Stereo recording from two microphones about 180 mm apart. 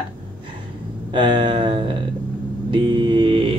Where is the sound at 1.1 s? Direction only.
25° right (ahead or behind).